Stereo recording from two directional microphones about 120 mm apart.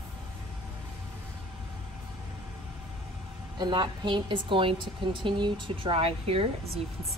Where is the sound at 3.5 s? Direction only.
40° right (ahead or behind).